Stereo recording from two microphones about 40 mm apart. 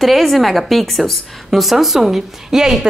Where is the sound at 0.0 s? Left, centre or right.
Centre.